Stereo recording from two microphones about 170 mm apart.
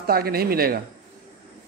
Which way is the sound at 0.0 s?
65° right (ahead or behind).